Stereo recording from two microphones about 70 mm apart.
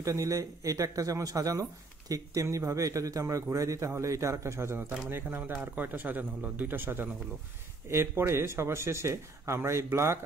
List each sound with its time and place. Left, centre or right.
0.0 s speech: right
5.1 s a man's voice: right